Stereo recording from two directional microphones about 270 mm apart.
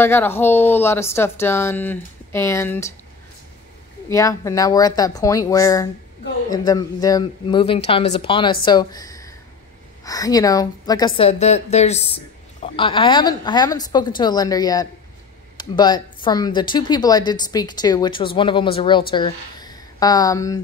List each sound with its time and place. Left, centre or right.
0.0 s speech: centre
4.1 s a woman's voice: centre